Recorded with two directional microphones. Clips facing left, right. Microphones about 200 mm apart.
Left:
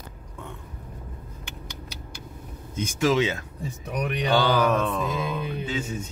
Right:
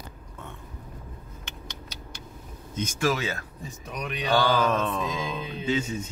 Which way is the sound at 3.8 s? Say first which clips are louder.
Left 5 dB; 65° left (ahead or behind).